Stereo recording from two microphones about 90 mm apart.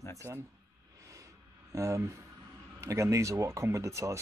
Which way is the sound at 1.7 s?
35° right (ahead or behind).